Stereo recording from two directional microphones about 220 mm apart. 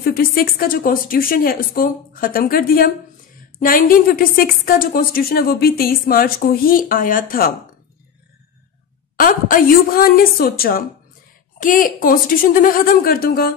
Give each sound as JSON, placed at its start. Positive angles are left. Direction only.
{"t": 0.0, "sound": "a woman's voice", "side_deg": 45}
{"t": 9.1, "sound": "a woman's voice", "side_deg": 40}